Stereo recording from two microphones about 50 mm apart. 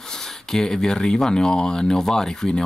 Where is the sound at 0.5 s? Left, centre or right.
Centre.